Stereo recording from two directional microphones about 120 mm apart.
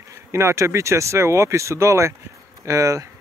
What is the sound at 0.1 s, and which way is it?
Speech, 20° right (ahead or behind).